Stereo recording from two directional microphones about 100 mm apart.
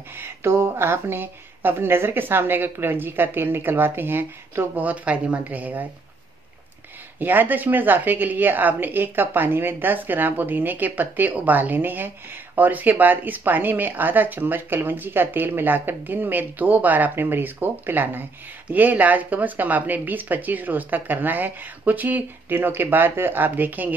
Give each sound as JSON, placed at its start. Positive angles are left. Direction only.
{"t": 0.2, "sound": "a woman's voice", "side_deg": -25}
{"t": 7.2, "sound": "a woman's voice", "side_deg": -20}